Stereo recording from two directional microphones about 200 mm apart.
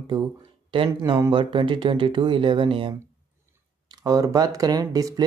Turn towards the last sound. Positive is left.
turn(degrees=-20)  # may be behind; listen again after turning